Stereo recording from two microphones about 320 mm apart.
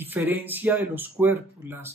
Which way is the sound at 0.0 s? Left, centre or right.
Centre.